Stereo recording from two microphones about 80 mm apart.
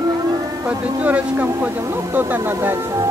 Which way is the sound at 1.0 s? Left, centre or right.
Centre.